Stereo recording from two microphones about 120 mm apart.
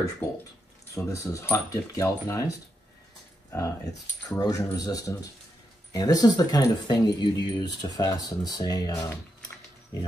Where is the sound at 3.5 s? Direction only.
30° left (ahead or behind).